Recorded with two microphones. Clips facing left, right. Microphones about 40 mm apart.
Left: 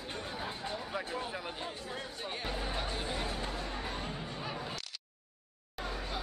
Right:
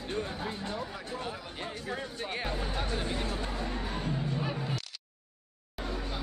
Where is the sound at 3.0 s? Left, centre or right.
Centre.